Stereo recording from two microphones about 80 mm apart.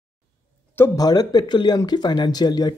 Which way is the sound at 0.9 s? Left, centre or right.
Left.